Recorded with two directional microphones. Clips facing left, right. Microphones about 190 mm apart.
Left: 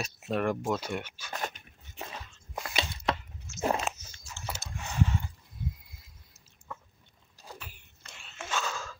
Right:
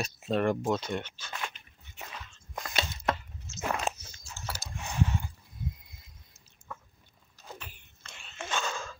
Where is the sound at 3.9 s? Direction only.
35° right (ahead or behind).